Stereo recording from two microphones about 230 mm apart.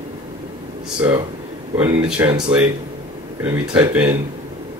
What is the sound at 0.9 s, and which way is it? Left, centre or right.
Mantra, centre.